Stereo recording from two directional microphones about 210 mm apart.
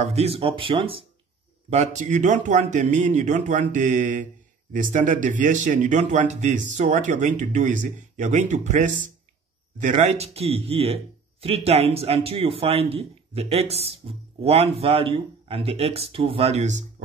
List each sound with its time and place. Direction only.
0.0 s speech: 30° right (ahead or behind)